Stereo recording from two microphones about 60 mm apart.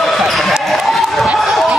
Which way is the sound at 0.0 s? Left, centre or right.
Centre.